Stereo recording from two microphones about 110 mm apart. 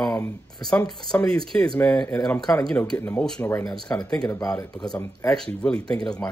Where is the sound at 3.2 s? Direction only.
5° left (ahead or behind).